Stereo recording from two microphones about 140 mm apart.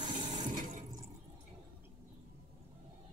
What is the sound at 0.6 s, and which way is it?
Water, 70° right (ahead or behind).